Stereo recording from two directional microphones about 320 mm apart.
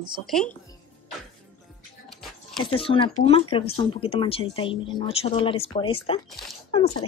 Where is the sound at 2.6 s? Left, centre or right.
Centre.